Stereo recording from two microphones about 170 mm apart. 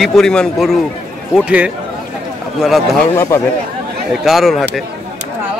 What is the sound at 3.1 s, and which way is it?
Speech, 20° left (ahead or behind).